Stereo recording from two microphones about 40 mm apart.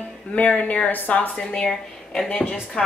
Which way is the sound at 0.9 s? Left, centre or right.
Left.